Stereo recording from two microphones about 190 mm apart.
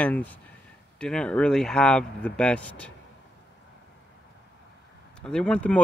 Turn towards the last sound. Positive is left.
turn(degrees=5)  # may be behind; listen again after turning